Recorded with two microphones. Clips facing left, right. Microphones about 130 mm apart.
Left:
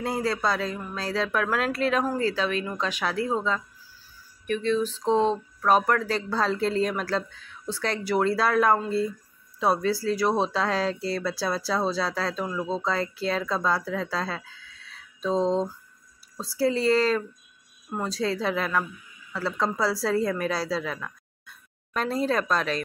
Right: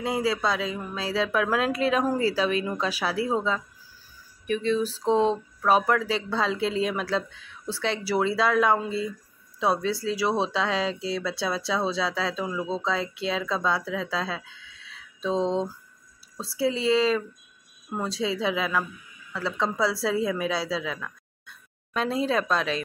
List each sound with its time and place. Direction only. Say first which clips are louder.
0.0 s speech: right 1 dB; centre (ahead or behind)